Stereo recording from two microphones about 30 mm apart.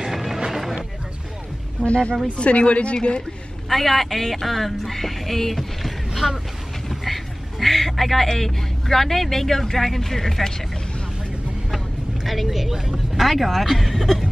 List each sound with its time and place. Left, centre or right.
0.0 s music: centre
1.9 s speech: left
3.6 s a woman's voice: centre
6.9 s a sound: centre
8.3 s speech: centre
12.4 s speech: centre
12.9 s speech: centre